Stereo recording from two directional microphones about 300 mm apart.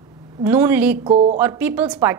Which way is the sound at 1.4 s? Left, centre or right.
Centre.